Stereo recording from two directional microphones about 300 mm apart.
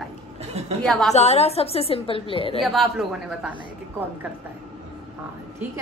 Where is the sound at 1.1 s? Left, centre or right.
Left.